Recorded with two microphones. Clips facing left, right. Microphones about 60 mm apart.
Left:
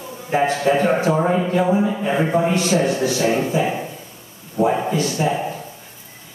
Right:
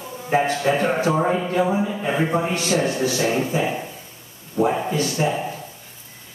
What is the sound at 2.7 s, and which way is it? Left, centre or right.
A man's voice, left.